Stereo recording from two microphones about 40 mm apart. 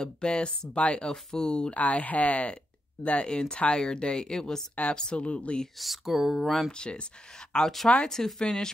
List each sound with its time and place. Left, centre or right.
0.0 s speech: left
1.1 s speech: centre
1.8 s speech: left; by 5.2 s centre
5.2 s speech: left
5.8 s speech: centre
6.7 s speech: left